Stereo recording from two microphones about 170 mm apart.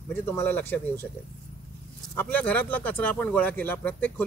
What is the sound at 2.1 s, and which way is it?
Speech, 10° left (ahead or behind).